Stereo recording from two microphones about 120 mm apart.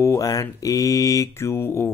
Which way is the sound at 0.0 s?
25° left (ahead or behind).